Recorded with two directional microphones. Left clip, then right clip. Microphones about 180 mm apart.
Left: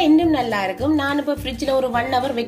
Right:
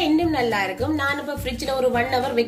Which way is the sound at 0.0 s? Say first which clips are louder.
Left 4 dB; 45° left (ahead or behind).